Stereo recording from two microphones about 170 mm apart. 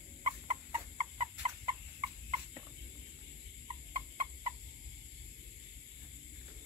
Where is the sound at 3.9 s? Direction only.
45° right (ahead or behind).